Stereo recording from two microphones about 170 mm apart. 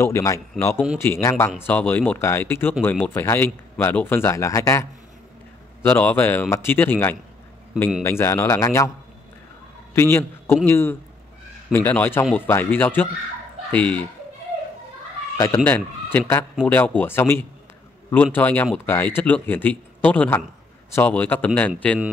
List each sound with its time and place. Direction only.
0.0 s speech: 15° left (ahead or behind)
9.9 s speech: 15° left (ahead or behind)
15.3 s speech: 20° left (ahead or behind)
15.6 s speech: 10° left (ahead or behind)